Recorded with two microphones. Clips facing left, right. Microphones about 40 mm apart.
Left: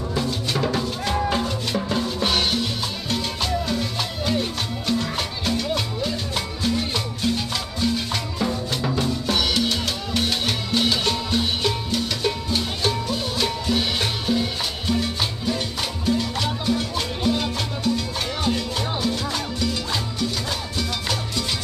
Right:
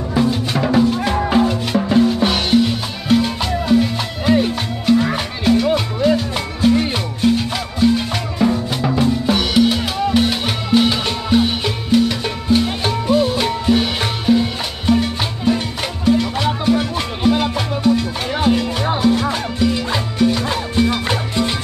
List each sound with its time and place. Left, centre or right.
0.1 s music: centre
5.7 s music: right